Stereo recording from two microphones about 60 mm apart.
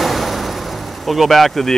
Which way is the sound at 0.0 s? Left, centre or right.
Centre.